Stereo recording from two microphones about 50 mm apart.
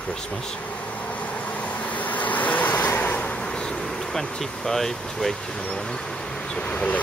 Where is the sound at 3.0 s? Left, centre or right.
Left; by 4.7 s centre.